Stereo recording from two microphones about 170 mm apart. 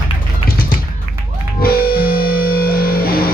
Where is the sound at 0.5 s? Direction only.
60° left (ahead or behind).